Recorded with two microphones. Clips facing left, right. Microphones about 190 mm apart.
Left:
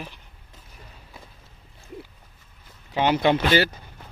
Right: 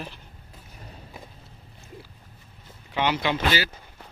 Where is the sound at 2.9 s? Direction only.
45° left (ahead or behind).